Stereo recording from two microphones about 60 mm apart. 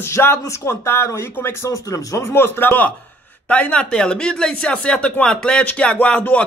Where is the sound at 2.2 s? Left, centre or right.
Left.